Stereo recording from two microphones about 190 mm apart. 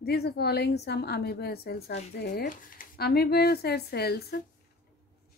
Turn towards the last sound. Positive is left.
turn(degrees=55)  # may be behind; listen again after turning